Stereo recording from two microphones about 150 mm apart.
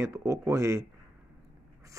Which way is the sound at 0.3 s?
20° right (ahead or behind).